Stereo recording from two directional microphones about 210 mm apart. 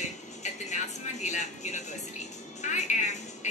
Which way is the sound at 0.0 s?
35° left (ahead or behind).